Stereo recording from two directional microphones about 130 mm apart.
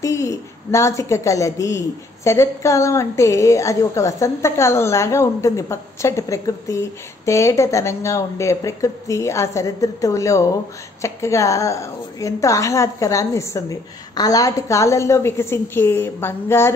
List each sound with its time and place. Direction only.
0.0 s a woman's voice: 25° left (ahead or behind)